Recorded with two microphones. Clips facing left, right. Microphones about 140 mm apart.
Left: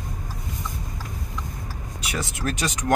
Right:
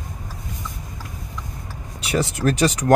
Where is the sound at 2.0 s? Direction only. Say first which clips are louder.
Right 8 dB; 30° right (ahead or behind).